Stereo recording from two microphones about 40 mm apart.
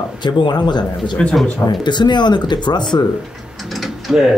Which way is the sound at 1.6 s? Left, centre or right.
Left.